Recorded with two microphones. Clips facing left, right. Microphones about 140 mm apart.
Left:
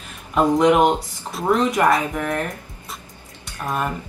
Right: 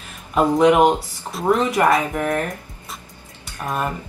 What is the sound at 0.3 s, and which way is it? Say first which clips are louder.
Speech: right 1 dB; 5° right (ahead or behind).